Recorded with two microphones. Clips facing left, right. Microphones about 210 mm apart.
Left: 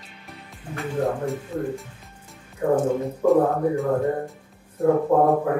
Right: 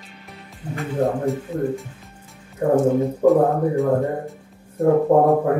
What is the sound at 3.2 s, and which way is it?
Speech, centre (ahead or behind).